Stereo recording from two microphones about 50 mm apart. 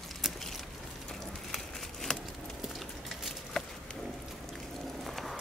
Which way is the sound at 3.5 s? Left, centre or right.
Centre.